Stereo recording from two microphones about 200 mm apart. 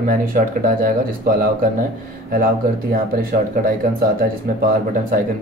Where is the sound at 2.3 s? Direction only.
45° right (ahead or behind).